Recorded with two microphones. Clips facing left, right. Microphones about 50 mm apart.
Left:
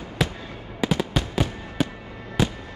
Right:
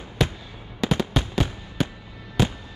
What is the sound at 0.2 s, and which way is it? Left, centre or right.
Fireworks, centre.